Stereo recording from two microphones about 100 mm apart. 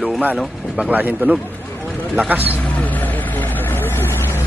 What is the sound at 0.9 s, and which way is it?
Speech, 15° right (ahead or behind).